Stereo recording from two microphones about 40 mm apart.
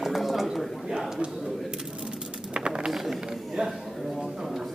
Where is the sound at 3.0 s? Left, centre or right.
Centre.